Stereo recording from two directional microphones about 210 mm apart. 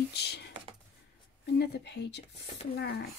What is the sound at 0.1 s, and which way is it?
Computer keyboard, 55° left (ahead or behind).